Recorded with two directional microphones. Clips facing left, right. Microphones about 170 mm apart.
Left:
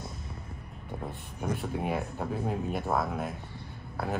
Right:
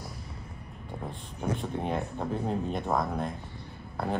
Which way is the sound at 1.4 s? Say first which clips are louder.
Right 1 dB; 10° left (ahead or behind).